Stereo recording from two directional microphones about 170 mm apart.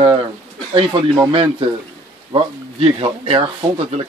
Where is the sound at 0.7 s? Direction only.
30° right (ahead or behind).